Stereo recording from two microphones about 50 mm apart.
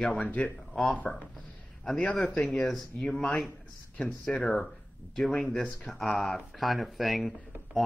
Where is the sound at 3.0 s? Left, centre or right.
Centre.